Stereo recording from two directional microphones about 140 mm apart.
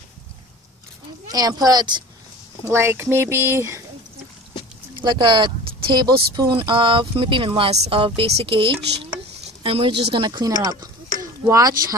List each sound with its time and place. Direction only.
1.3 s speech: 30° right (ahead or behind)
2.6 s speech: 20° right (ahead or behind)
5.0 s speech: 35° right (ahead or behind)